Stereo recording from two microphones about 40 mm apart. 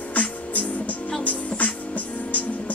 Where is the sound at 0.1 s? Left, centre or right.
Left.